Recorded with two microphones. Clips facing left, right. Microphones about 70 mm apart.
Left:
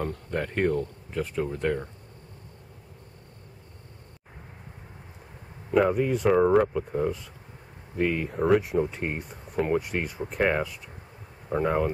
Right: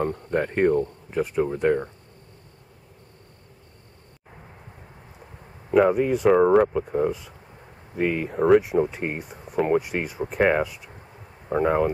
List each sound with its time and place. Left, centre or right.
0.0 s speech: right
5.7 s speech: centre